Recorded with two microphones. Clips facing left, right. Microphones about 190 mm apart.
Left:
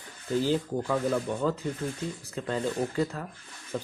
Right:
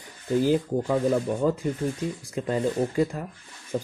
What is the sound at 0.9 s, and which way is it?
Speech, 20° right (ahead or behind).